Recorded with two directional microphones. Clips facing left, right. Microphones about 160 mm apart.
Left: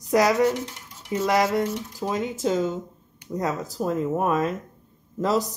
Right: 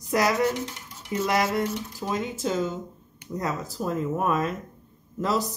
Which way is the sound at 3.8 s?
35° left (ahead or behind).